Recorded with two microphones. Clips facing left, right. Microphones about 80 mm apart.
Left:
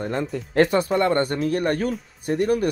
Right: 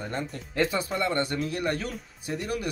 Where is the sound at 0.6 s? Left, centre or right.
Left.